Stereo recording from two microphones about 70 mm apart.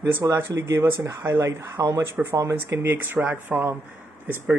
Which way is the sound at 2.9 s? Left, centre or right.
Right.